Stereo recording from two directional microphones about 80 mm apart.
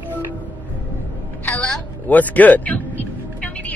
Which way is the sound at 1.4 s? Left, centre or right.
Centre.